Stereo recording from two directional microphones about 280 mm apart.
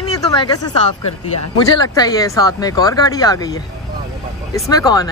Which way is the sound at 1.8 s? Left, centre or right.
Centre.